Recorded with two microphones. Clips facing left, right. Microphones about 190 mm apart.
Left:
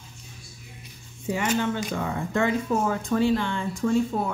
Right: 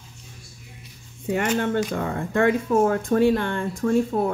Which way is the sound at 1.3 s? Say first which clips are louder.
Right 3 dB; 55° right (ahead or behind).